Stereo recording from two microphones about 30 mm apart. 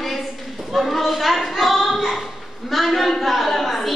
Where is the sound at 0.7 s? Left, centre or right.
Centre.